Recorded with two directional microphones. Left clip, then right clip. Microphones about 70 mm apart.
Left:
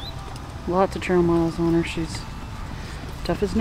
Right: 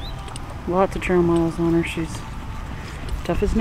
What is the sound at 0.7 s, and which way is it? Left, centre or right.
Speech, centre.